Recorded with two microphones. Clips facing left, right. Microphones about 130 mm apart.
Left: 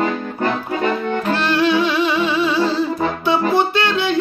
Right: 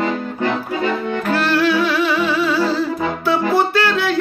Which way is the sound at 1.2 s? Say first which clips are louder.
Right 1 dB; 25° left (ahead or behind).